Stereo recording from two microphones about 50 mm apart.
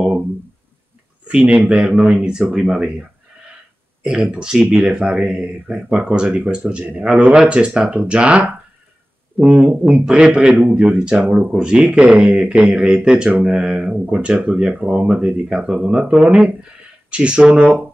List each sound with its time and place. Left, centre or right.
1.2 s speech: right
2.1 s speech: centre; by 10.9 s right
10.9 s speech: centre
16.2 s speech: right